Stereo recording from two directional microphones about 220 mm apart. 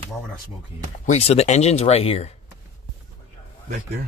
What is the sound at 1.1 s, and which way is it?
Speech, 30° left (ahead or behind).